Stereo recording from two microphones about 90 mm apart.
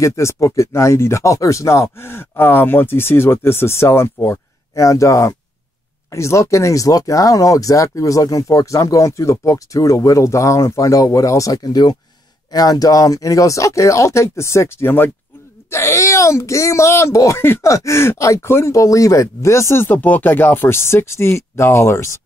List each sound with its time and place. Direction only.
0.0 s speech: 35° left (ahead or behind)